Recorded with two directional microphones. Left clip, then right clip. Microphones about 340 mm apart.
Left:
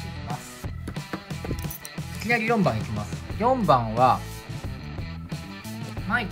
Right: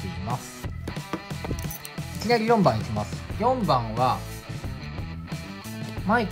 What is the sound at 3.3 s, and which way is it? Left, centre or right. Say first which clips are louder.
Speech: left 2 dB; centre.